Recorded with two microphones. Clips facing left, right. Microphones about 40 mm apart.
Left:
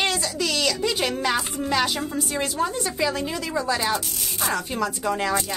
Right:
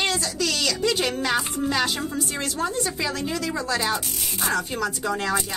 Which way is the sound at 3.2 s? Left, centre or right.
Left.